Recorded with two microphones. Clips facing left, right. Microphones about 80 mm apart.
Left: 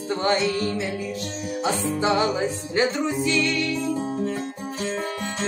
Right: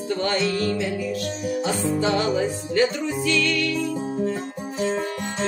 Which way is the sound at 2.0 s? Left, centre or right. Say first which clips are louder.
Left 1 dB; left.